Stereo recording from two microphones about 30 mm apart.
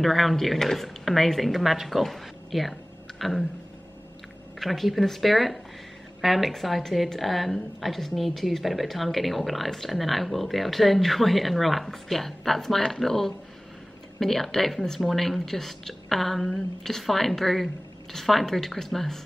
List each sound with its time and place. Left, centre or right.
0.0 s a woman's voice: centre
1.6 s speech: centre
1.9 s speech: centre
4.6 s a woman's voice: centre
14.2 s a woman's voice: centre